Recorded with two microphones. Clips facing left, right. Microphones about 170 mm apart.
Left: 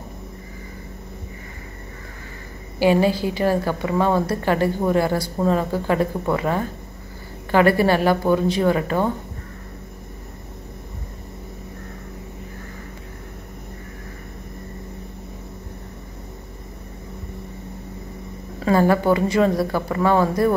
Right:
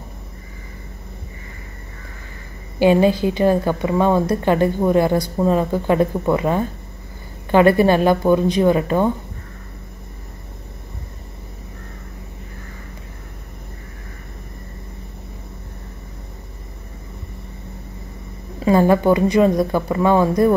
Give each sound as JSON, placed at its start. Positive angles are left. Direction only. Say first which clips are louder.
{"t": 2.8, "sound": "speech", "louder": "right 3 dB", "side_deg": -20}
{"t": 18.6, "sound": "a woman's voice", "louder": "right 3 dB", "side_deg": -20}